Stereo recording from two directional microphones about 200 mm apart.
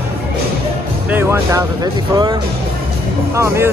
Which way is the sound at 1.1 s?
15° right (ahead or behind).